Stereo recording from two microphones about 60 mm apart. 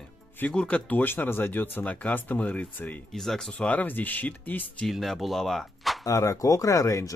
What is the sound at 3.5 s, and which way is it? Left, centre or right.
Speech, left.